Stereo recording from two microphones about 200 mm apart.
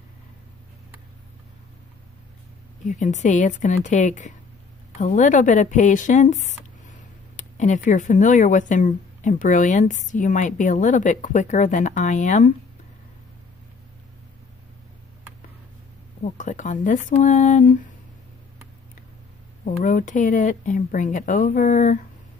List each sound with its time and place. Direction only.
2.9 s speech: 35° left (ahead or behind)
16.3 s speech: 40° left (ahead or behind)
19.6 s speech: 40° left (ahead or behind)